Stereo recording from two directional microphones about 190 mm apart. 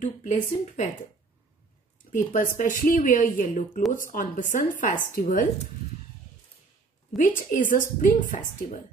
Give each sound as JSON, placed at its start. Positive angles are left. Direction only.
{"t": 0.0, "sound": "speech", "side_deg": 40}
{"t": 2.1, "sound": "speech", "side_deg": 45}
{"t": 7.2, "sound": "speech", "side_deg": 45}